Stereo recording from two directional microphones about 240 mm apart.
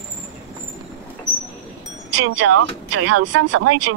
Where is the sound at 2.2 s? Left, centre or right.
Right.